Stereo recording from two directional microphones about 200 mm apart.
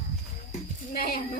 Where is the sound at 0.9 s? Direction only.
50° left (ahead or behind).